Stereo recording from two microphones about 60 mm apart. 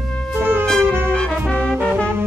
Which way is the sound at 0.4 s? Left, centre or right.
Right.